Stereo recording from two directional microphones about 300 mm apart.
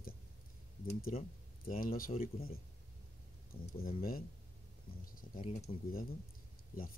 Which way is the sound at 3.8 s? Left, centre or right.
Left.